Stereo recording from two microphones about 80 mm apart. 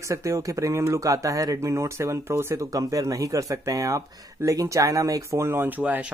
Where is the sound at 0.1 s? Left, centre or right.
Right.